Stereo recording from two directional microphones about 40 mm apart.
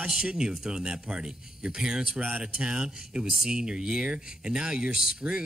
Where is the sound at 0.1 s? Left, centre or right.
Centre.